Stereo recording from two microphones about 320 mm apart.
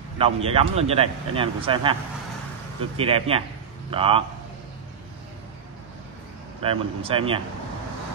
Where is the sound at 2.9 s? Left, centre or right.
Centre.